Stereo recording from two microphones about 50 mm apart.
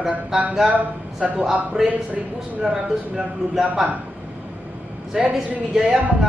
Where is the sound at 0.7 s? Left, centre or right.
Right.